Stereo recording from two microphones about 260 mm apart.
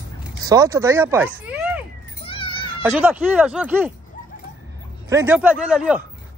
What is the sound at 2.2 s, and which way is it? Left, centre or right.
Cat, centre.